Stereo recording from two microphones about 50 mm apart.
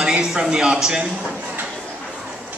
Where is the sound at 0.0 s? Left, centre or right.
Centre.